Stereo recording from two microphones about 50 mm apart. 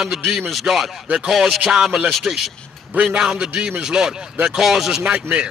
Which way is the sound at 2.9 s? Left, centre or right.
Right.